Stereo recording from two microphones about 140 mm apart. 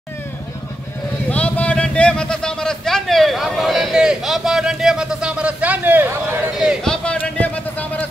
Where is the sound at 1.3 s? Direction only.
10° left (ahead or behind); by 6.0 s 10° right (ahead or behind).